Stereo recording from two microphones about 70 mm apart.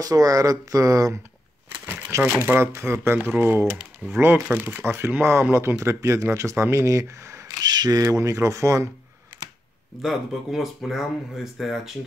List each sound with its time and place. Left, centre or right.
0.0 s speech: right
1.9 s crumpling: right
2.3 s speech: right
7.4 s camera: right
8.0 s speech: right
10.0 s speech: centre